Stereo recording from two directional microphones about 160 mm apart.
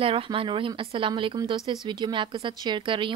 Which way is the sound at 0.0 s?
35° right (ahead or behind).